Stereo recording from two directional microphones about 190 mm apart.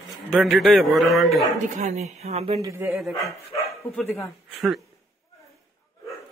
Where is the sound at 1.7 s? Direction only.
40° right (ahead or behind).